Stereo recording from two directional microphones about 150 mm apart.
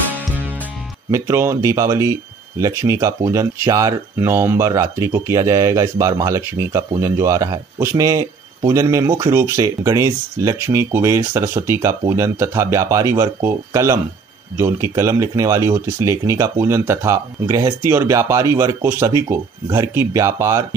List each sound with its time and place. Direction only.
1.1 s speech: 20° right (ahead or behind)